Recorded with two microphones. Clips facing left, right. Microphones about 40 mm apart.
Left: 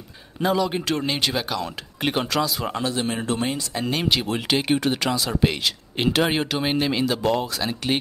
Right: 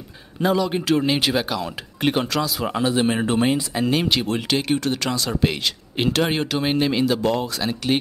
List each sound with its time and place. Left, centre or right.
0.4 s speech: centre
2.8 s speech: centre
3.8 s speech: centre